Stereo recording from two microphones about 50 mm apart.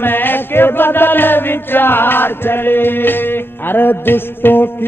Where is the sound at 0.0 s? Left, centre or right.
Left.